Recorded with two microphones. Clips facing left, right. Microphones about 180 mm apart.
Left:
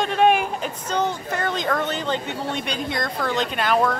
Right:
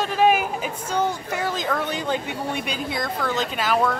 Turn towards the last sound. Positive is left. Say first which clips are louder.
# left 1 dB
turn(degrees=0)  # may be behind; listen again after turning